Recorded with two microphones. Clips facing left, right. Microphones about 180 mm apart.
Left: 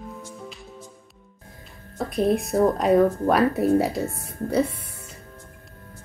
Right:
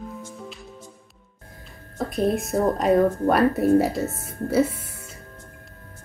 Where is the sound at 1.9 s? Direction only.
Centre (ahead or behind).